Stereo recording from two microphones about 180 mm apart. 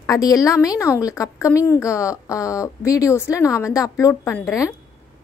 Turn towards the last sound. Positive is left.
turn(degrees=15)  # may be behind; listen again after turning